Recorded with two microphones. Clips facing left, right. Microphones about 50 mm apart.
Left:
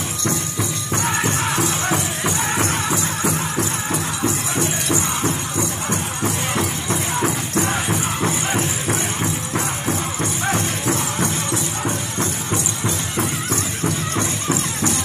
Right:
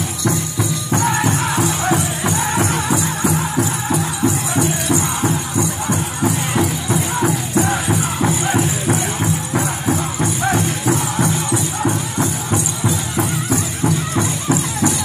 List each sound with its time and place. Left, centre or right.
1.2 s music: centre